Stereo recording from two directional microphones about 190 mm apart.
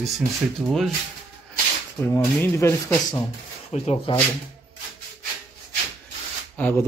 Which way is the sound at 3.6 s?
35° left (ahead or behind).